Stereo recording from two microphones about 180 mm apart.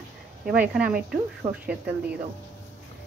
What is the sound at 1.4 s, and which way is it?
Speech, 25° right (ahead or behind).